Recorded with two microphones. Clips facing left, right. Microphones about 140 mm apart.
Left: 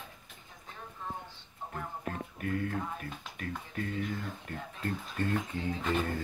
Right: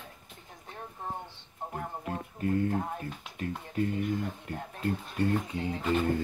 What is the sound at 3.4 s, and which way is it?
Speech, 25° right (ahead or behind).